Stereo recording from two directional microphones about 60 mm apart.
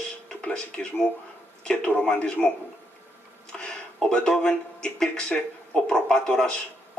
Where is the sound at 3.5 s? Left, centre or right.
Centre.